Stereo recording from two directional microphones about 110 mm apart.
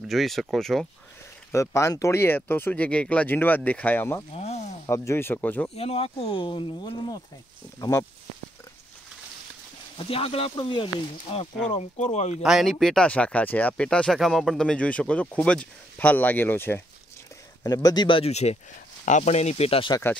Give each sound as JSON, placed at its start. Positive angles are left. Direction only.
{"t": 0.1, "sound": "speech", "side_deg": 0}
{"t": 1.5, "sound": "speech", "side_deg": 25}
{"t": 4.3, "sound": "a sound", "side_deg": 80}
{"t": 4.8, "sound": "speech", "side_deg": 25}
{"t": 5.8, "sound": "speech", "side_deg": 65}
{"t": 9.9, "sound": "speech", "side_deg": 55}
{"t": 12.0, "sound": "speech", "side_deg": 90}
{"t": 12.4, "sound": "speech", "side_deg": -5}
{"t": 17.6, "sound": "speech", "side_deg": 35}
{"t": 18.0, "sound": "speech", "side_deg": 50}
{"t": 18.3, "sound": "speech", "side_deg": 75}
{"t": 19.0, "sound": "speech", "side_deg": 90}